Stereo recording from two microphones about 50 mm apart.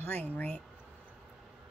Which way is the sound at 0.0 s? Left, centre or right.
Left.